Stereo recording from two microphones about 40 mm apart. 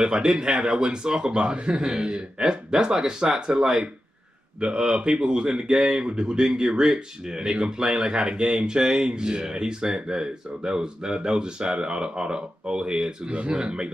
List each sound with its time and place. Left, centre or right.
0.0 s speech: centre